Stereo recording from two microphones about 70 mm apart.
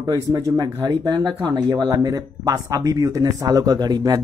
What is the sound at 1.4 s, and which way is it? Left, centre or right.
Speech, right.